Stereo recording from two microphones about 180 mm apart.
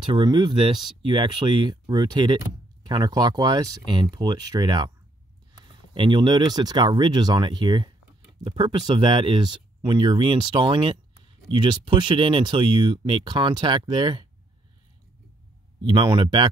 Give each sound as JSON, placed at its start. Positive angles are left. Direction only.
{"t": 0.1, "sound": "speech", "side_deg": -25}
{"t": 15.8, "sound": "speech", "side_deg": -25}